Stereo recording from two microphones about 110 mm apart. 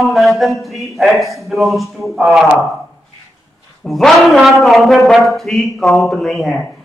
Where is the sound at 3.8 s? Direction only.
5° left (ahead or behind).